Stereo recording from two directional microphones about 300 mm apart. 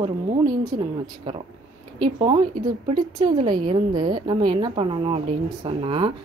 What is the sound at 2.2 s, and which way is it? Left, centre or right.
A woman's voice, centre.